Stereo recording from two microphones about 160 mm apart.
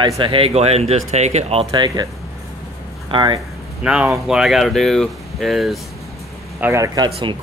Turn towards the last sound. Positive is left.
turn(degrees=-30)  # may be behind; listen again after turning